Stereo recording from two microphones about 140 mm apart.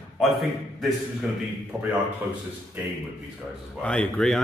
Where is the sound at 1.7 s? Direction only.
Centre (ahead or behind).